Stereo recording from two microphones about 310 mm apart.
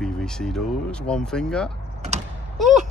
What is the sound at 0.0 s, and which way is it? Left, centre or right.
Speech, centre.